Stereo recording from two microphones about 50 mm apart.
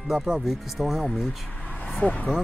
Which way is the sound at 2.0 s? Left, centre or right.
Left.